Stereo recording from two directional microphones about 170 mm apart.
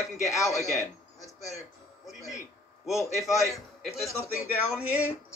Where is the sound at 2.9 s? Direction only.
15° left (ahead or behind).